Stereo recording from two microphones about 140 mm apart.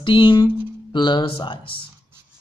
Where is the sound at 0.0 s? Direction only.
35° left (ahead or behind).